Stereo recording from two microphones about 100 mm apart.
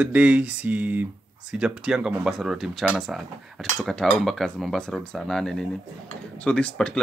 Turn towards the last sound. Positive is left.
turn(degrees=10)  # may be behind; listen again after turning